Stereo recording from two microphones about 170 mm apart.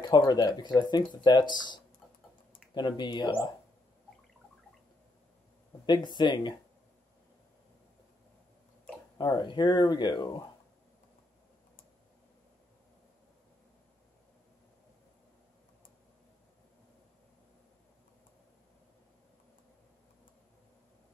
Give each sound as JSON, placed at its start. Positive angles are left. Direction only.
{"t": 0.0, "sound": "speech", "side_deg": 25}
{"t": 5.9, "sound": "speech", "side_deg": 25}
{"t": 9.2, "sound": "speech", "side_deg": 25}